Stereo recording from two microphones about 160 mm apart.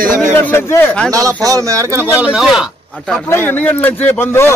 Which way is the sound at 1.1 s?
20° right (ahead or behind).